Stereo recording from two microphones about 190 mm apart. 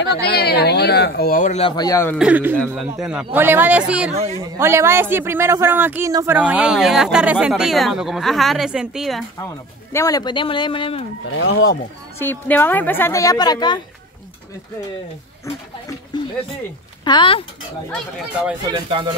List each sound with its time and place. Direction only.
0.0 s speech: 60° left (ahead or behind); by 2.1 s 15° left (ahead or behind)
2.1 s speech: 5° right (ahead or behind)
4.1 s a man's voice: 35° right (ahead or behind)
4.4 s speech: 15° right (ahead or behind)
9.9 s speech: 20° left (ahead or behind)
11.2 s speech: 75° left (ahead or behind)
12.2 s a woman's voice: 10° left (ahead or behind)
15.4 s a woman's voice: 20° left (ahead or behind)
18.7 s speech: 25° right (ahead or behind)